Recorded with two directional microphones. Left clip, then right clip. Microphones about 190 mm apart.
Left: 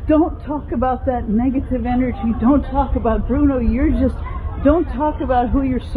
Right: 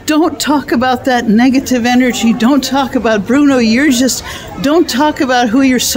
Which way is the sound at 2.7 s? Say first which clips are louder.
Right 7 dB; 70° right (ahead or behind).